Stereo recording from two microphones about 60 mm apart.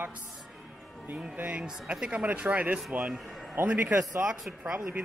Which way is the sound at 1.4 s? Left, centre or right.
Centre.